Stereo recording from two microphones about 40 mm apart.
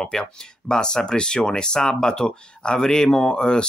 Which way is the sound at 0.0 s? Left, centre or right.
Centre.